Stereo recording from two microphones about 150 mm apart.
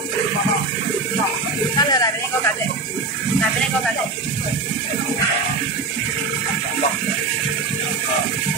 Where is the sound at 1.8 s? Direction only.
25° left (ahead or behind).